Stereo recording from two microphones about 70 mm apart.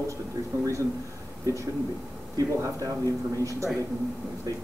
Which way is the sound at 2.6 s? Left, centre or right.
Right.